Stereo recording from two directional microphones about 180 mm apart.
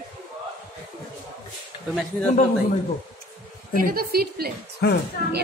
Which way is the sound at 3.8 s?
55° right (ahead or behind).